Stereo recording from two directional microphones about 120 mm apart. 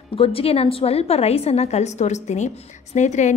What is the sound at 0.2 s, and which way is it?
A woman's voice, 50° left (ahead or behind).